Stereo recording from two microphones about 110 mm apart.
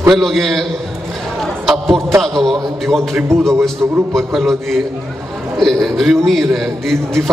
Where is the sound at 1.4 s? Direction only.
Centre (ahead or behind).